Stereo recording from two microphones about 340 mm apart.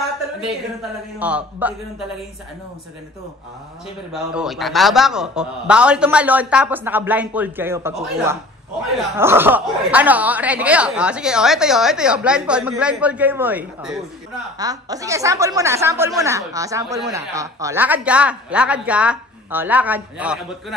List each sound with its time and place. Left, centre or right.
1.2 s speech: centre
4.1 s a woman's voice: centre